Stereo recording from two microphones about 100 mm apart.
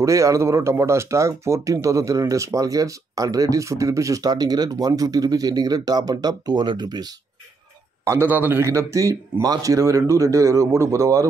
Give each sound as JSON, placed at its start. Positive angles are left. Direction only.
{"t": 0.0, "sound": "speech", "side_deg": -30}
{"t": 8.0, "sound": "speech", "side_deg": -25}